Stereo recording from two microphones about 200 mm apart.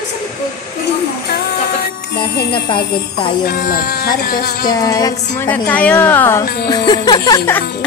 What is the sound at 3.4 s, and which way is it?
Speech, 45° left (ahead or behind).